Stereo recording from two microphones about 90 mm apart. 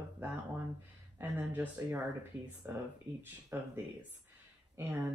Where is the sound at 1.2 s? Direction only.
20° right (ahead or behind).